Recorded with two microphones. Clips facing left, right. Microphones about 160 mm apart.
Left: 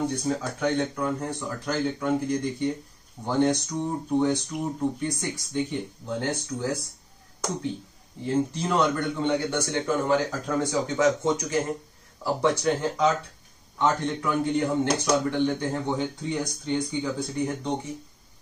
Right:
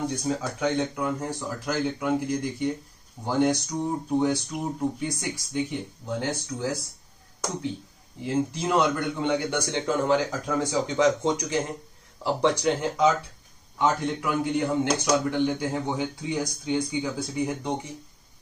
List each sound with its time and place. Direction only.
0.1 s a man's voice: 15° right (ahead or behind)
8.2 s a man's voice: 10° right (ahead or behind)